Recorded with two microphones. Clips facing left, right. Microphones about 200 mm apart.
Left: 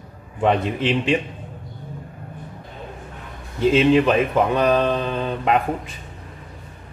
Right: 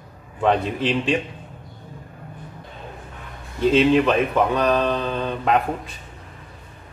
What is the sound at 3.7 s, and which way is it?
Speech, 5° left (ahead or behind).